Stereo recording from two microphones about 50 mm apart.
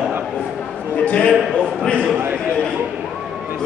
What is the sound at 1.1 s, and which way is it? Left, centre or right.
Speech, left.